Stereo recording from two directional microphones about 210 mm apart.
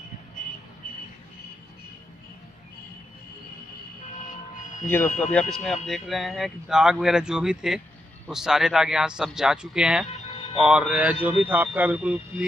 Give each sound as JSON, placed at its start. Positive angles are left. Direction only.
{"t": 4.8, "sound": "speech", "side_deg": 10}